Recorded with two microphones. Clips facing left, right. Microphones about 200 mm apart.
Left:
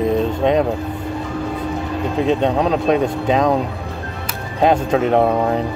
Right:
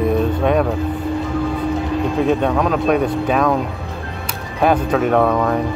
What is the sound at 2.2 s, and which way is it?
Speech, 20° left (ahead or behind).